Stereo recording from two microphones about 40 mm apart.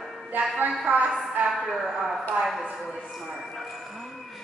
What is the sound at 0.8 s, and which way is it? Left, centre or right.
Speech, right.